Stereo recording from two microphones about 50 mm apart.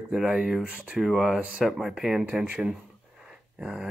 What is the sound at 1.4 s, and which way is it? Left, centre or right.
Speech, right.